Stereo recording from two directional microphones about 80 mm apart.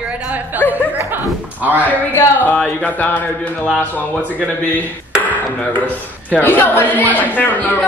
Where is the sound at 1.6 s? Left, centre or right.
Right.